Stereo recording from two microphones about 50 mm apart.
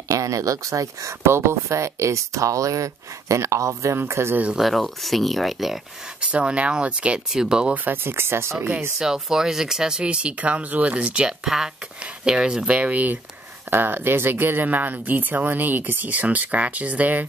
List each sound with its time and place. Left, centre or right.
0.1 s speech: right
1.3 s speech: right
4.1 s speech: right
4.6 s speech: centre
6.2 s speech: right
7.7 s speech: right
8.9 s speech: centre
11.4 s speech: centre; by 13.2 s right
13.7 s speech: right